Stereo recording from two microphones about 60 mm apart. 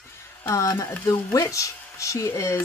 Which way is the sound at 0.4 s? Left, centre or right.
Left.